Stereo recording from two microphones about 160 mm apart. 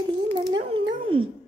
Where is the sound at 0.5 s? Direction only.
35° right (ahead or behind).